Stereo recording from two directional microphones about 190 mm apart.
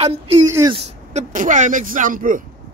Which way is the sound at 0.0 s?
30° right (ahead or behind).